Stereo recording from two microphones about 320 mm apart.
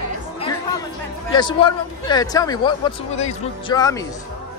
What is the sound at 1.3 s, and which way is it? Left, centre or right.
Speech, centre.